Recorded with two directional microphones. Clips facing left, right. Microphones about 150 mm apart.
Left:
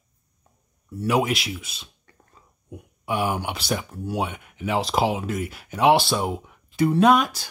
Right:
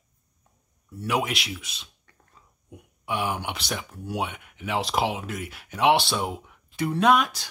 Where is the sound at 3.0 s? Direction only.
40° left (ahead or behind).